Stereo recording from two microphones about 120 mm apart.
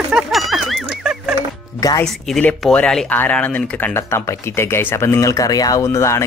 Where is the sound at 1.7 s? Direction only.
30° left (ahead or behind).